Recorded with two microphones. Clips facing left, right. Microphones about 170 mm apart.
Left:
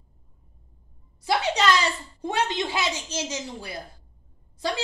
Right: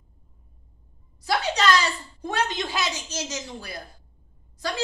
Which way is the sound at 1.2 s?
25° left (ahead or behind).